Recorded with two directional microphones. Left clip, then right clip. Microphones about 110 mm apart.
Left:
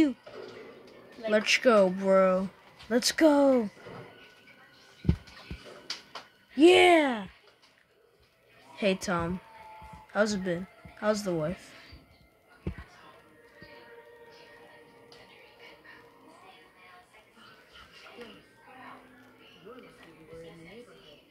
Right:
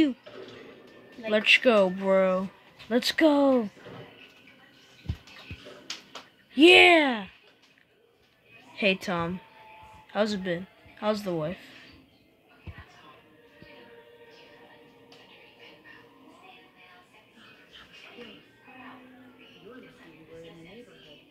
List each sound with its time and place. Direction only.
1.3 s speech: 25° left (ahead or behind)
2.0 s speech: 15° left (ahead or behind)
3.0 s speech: 25° left (ahead or behind)
6.5 s speech: 15° right (ahead or behind)
6.8 s speech: 5° left (ahead or behind)
8.7 s a woman's voice: 20° left (ahead or behind)